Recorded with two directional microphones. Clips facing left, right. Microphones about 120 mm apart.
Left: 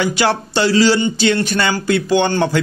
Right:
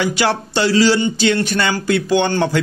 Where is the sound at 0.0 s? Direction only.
30° left (ahead or behind).